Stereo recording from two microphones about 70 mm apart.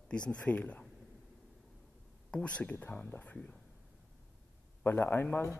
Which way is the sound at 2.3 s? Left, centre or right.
Centre.